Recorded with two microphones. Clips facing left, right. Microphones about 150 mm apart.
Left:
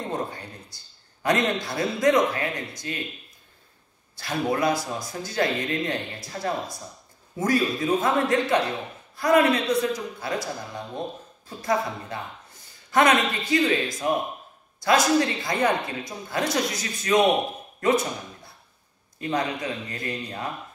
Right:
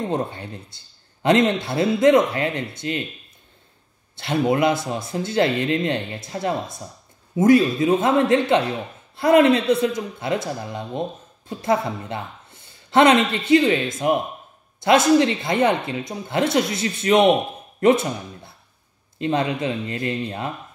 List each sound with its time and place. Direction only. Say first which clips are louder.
0.1 s a man's voice: right 5 dB; 25° right (ahead or behind)
4.2 s a man's voice: right 5 dB; 25° right (ahead or behind)
17.7 s a sound: right 6 dB; 25° right (ahead or behind)
19.1 s a man's voice: right 5 dB; 25° right (ahead or behind)